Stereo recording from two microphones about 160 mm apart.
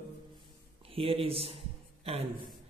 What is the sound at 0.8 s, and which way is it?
Speech, 35° right (ahead or behind).